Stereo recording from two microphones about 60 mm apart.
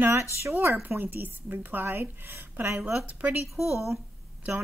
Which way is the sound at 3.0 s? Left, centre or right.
Right.